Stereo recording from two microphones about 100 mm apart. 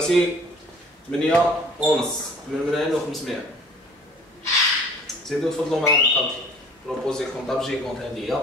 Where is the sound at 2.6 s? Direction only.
Centre (ahead or behind).